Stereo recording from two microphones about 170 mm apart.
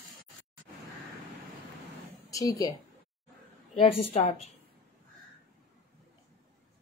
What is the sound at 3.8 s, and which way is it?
Speech, 35° left (ahead or behind).